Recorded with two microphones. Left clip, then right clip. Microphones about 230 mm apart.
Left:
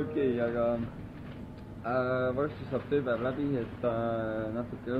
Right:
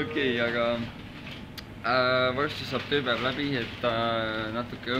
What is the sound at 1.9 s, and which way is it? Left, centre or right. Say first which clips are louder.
Speech: right 6 dB; centre.